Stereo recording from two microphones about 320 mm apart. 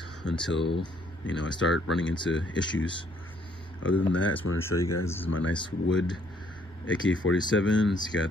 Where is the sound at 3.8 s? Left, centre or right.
Left.